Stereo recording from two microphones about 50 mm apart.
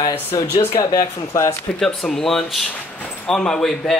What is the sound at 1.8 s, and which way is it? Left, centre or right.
A man's voice, centre.